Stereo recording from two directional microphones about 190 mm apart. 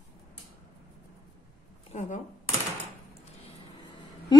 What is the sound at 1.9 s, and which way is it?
Speech, 40° left (ahead or behind).